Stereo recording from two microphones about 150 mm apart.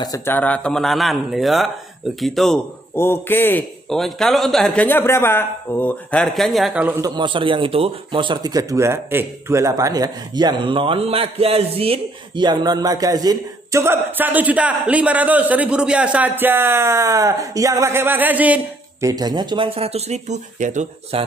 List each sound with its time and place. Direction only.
0.0 s a man's voice: 20° left (ahead or behind); by 2.6 s centre (ahead or behind)
3.0 s a man's voice: 15° left (ahead or behind)
3.9 s a man's voice: centre (ahead or behind)
4.8 s a man's voice: 15° left (ahead or behind)
6.2 s a man's voice: centre (ahead or behind)
7.0 s a man's voice: 30° right (ahead or behind); by 19.0 s 10° right (ahead or behind)
19.0 s speech: 25° right (ahead or behind); by 20.8 s 55° right (ahead or behind)
21.1 s speech: 40° right (ahead or behind)